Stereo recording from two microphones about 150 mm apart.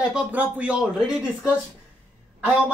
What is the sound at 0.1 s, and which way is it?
Speech, 10° right (ahead or behind).